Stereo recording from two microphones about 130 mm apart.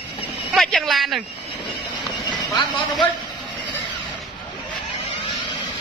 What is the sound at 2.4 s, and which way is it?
Speech, 35° left (ahead or behind).